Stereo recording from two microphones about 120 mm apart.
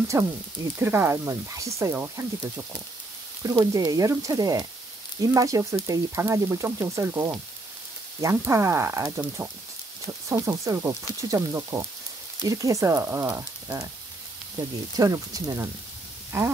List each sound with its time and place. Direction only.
0.1 s speech: 25° right (ahead or behind)
3.4 s frying: 30° right (ahead or behind)
5.2 s speech: 30° right (ahead or behind)
15.0 s speech: 30° right (ahead or behind)